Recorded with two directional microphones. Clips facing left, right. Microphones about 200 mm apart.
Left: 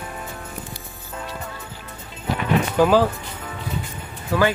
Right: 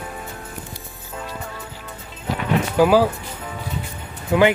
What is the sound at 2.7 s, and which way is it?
Speech, 10° right (ahead or behind).